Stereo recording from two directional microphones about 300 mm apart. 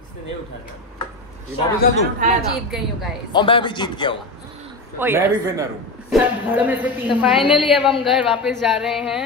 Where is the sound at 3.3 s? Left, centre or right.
Centre.